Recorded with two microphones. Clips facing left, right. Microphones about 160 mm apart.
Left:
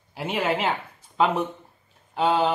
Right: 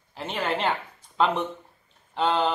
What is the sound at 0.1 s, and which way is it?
Speech, 10° left (ahead or behind).